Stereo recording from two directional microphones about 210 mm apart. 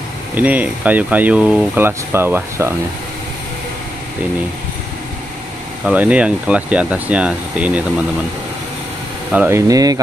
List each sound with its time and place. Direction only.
0.3 s speech: 5° right (ahead or behind)
5.9 s speech: 5° right (ahead or behind)
9.3 s speech: 5° right (ahead or behind)
9.7 s speech: 15° right (ahead or behind)